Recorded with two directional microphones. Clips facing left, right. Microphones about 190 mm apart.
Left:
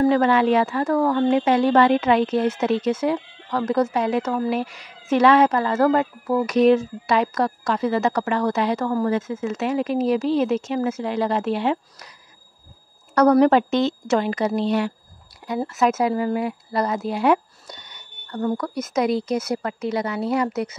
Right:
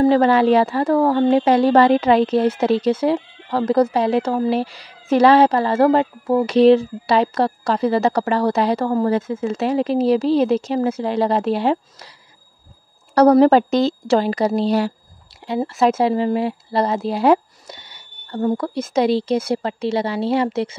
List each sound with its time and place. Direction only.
0.0 s speech: 30° right (ahead or behind)
13.1 s a woman's voice: 30° right (ahead or behind)